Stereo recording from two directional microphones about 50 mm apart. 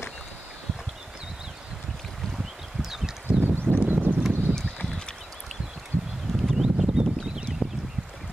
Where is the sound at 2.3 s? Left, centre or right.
Centre.